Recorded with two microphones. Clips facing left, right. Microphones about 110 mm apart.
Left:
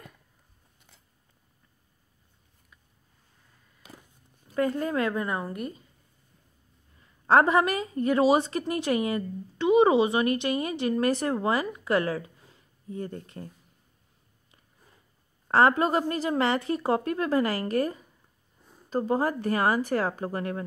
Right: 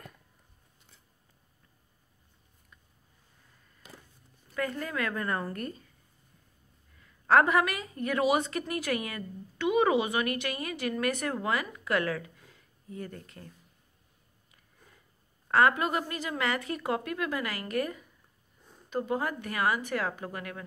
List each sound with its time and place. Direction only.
4.6 s a woman's voice: 25° left (ahead or behind)
7.0 s a woman's voice: 30° left (ahead or behind)
15.4 s speech: 30° left (ahead or behind)